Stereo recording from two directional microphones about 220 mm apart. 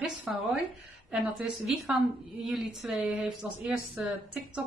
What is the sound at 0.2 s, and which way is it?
A woman's voice, 5° right (ahead or behind).